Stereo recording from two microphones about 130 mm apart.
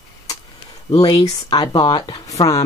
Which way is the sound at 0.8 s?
30° left (ahead or behind).